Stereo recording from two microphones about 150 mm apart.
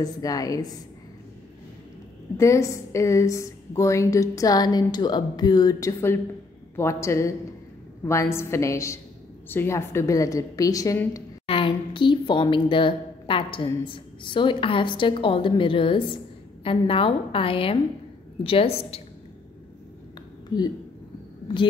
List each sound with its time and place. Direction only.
0.0 s a woman's voice: 25° left (ahead or behind)
2.3 s a woman's voice: 20° left (ahead or behind)
11.4 s a woman's voice: 35° left (ahead or behind)
20.4 s speech: 25° left (ahead or behind)